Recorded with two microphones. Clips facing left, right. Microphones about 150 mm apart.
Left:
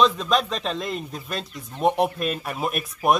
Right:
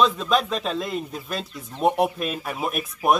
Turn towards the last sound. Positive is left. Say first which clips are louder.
# even
turn(degrees=0)  # may be behind; listen again after turning